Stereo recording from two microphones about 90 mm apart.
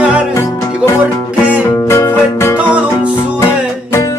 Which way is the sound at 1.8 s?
30° left (ahead or behind).